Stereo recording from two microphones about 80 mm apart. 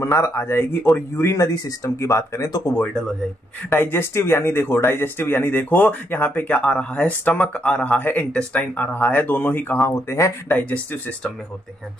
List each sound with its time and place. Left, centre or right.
0.0 s speech: left
3.7 s speech: left
10.5 s speech: centre